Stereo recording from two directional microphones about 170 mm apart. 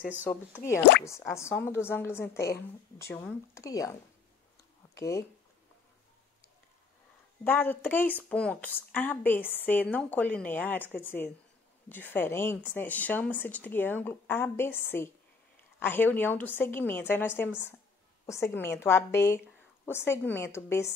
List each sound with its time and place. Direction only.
0.2 s speech: 10° left (ahead or behind)
4.9 s speech: 20° left (ahead or behind)
7.4 s speech: 10° left (ahead or behind)
18.3 s speech: 15° left (ahead or behind)